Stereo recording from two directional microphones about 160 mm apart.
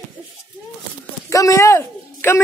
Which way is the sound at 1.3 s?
20° left (ahead or behind).